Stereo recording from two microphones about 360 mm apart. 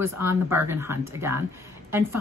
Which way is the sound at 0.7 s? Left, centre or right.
Centre.